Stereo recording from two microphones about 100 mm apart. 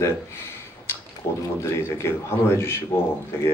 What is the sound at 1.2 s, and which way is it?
Speech, 30° left (ahead or behind).